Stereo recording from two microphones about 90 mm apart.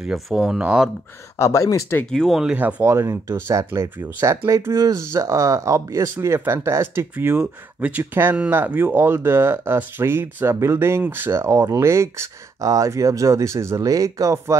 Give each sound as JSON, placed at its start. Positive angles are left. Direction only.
{"t": 0.0, "sound": "speech", "side_deg": -5}
{"t": 1.4, "sound": "speech", "side_deg": 35}
{"t": 2.0, "sound": "speech", "side_deg": 5}
{"t": 2.4, "sound": "speech", "side_deg": -20}
{"t": 2.9, "sound": "speech", "side_deg": -30}